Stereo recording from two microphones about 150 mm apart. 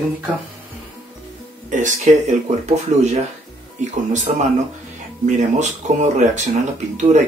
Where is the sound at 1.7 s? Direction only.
55° right (ahead or behind).